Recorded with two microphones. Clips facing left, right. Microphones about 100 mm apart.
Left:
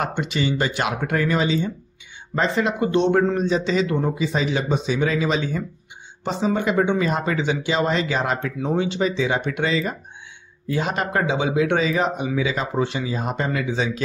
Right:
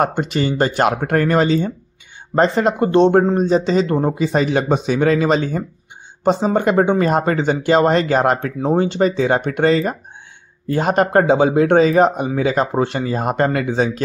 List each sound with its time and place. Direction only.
0.0 s speech: 40° right (ahead or behind)
8.5 s speech: 40° right (ahead or behind)